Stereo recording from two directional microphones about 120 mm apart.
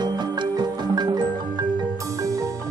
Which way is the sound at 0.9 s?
35° right (ahead or behind).